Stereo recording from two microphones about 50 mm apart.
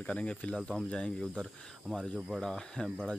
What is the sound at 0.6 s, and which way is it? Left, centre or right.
Speech, centre.